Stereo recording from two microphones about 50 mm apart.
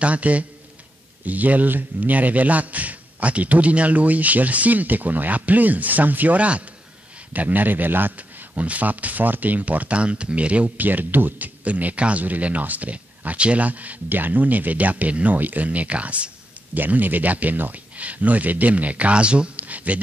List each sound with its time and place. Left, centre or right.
0.0 s a man's voice: right
8.2 s speech: right
16.7 s speech: right